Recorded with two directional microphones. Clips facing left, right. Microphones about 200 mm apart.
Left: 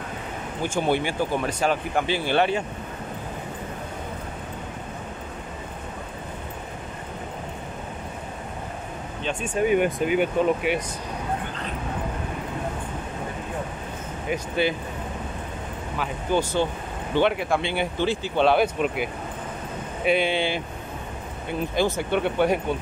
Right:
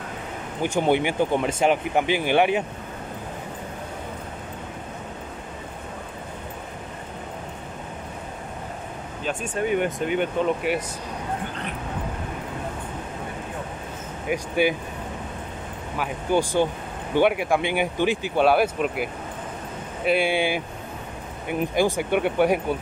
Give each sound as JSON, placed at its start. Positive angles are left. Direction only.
{"t": 0.6, "sound": "speech", "side_deg": -15}
{"t": 9.7, "sound": "speech", "side_deg": 10}
{"t": 14.3, "sound": "speech", "side_deg": -10}
{"t": 16.0, "sound": "speech", "side_deg": -15}
{"t": 20.1, "sound": "speech", "side_deg": -10}